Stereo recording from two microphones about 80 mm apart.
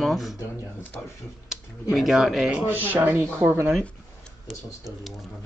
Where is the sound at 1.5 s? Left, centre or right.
Centre.